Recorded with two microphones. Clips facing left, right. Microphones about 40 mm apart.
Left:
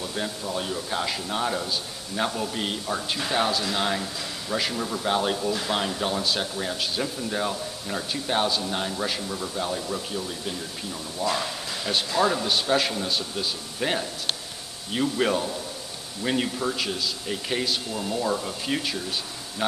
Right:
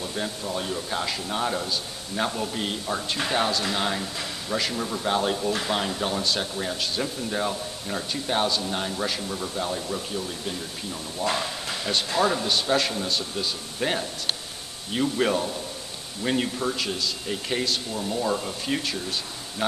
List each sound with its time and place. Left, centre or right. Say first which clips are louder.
0.2 s speech: even; centre
12.2 s speech: even; centre